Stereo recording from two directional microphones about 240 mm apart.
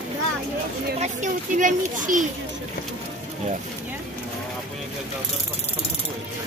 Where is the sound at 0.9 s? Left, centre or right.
Right.